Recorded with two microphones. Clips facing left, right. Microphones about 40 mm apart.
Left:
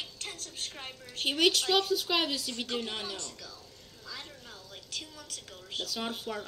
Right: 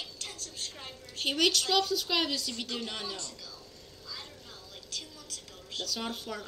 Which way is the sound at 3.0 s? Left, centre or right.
Left.